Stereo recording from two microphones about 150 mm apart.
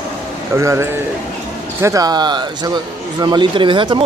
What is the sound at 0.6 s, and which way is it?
A man's voice, 20° right (ahead or behind).